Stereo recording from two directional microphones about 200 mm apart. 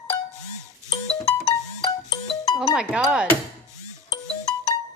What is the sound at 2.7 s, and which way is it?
Speech, 5° right (ahead or behind).